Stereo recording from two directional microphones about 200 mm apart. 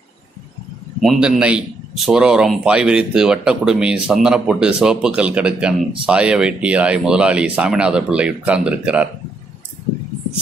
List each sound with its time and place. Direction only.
1.0 s a man's voice: centre (ahead or behind)